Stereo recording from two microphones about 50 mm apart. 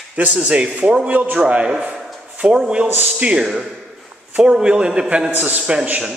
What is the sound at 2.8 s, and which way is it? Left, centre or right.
A man's voice, right.